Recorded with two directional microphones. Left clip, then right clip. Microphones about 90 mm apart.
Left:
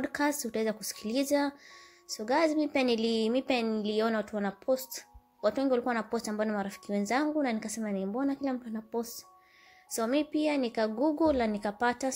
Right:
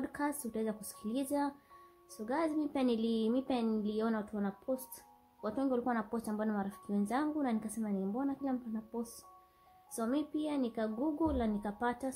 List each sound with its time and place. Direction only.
0.0 s speech: 40° left (ahead or behind)
5.4 s speech: 30° left (ahead or behind)
9.9 s speech: 35° left (ahead or behind)